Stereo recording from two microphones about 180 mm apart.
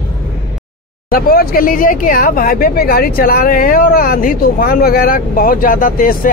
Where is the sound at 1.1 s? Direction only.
55° left (ahead or behind).